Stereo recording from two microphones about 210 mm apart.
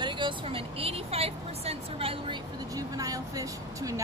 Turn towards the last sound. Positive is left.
turn(degrees=-15)  # may be behind; listen again after turning